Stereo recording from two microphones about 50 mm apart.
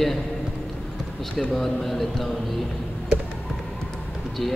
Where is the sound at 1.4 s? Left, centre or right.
Centre.